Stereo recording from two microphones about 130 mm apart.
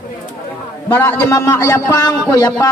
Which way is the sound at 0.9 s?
20° left (ahead or behind).